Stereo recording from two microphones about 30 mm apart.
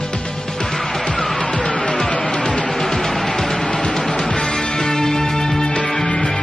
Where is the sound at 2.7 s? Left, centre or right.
Centre.